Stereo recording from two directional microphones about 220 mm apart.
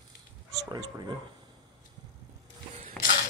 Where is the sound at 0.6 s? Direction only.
20° right (ahead or behind).